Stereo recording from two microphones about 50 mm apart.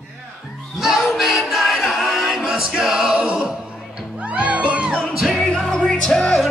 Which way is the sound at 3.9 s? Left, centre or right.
Right.